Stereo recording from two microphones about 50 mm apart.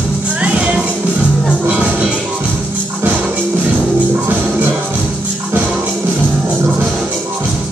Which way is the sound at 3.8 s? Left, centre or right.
Right.